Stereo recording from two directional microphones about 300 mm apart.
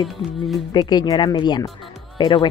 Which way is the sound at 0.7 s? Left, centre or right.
Centre.